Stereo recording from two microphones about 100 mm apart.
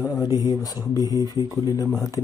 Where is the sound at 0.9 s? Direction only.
35° right (ahead or behind).